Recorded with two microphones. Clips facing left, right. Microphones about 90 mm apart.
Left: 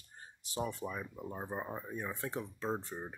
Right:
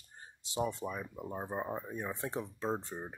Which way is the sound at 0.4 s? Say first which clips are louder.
Right 3 dB; 20° right (ahead or behind).